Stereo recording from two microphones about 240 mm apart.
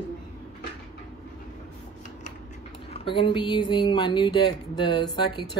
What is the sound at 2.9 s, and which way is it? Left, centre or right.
Speech, left.